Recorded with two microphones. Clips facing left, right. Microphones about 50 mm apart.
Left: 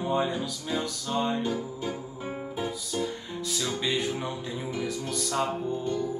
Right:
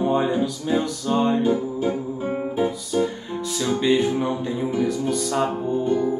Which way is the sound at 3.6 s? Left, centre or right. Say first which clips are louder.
Right 10 dB; right.